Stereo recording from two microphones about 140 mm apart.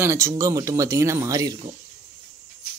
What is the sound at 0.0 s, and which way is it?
Speech, 20° right (ahead or behind).